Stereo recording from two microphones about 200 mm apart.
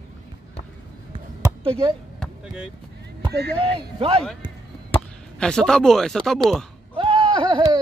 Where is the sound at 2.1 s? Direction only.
Centre (ahead or behind).